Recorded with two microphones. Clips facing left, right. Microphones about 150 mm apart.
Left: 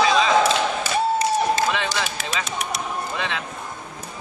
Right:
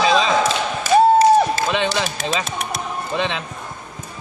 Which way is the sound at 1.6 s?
25° right (ahead or behind).